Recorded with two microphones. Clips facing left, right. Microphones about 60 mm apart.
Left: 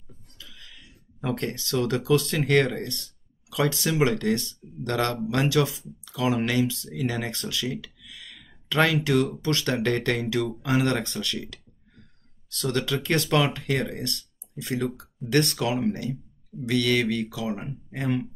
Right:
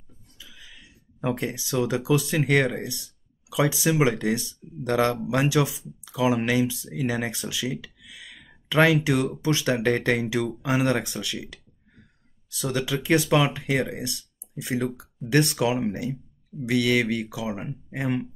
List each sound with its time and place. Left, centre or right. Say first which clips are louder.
0.4 s speech: right 1 dB; centre